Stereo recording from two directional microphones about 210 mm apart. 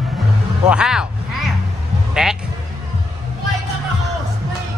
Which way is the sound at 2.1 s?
Centre (ahead or behind).